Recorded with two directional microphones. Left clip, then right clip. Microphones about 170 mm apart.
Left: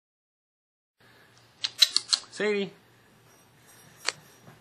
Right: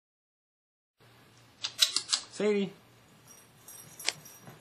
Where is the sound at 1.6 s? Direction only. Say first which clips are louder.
Left 5 dB; centre (ahead or behind).